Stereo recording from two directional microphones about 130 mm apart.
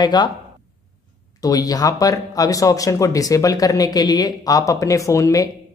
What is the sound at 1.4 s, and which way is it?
Speech, 30° left (ahead or behind).